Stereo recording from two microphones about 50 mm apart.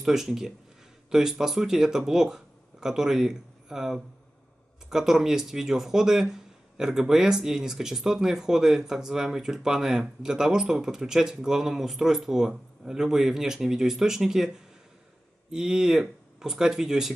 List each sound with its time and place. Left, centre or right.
0.0 s speech: centre